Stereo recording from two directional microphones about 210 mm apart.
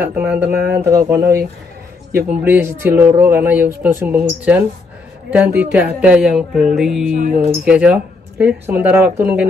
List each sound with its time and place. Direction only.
0.0 s speech: 10° right (ahead or behind)
2.1 s speech: 10° right (ahead or behind)